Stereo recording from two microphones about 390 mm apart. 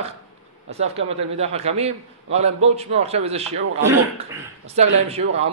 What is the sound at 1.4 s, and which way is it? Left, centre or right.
A man's voice, centre.